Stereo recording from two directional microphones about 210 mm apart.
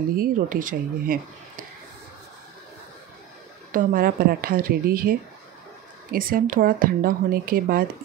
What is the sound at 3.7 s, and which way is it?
Speech, 40° right (ahead or behind).